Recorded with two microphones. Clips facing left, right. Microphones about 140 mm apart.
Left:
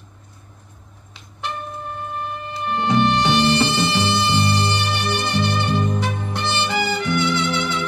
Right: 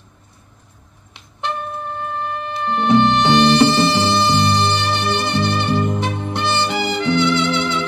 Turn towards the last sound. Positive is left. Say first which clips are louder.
# right 3 dB
turn(degrees=-20)  # may be behind; listen again after turning